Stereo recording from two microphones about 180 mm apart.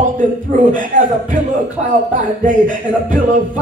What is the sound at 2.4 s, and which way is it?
Speech, 45° right (ahead or behind).